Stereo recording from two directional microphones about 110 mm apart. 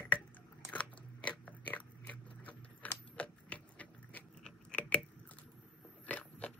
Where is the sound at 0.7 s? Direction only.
10° left (ahead or behind).